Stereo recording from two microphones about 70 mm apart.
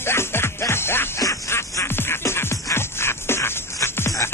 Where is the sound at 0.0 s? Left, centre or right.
Left.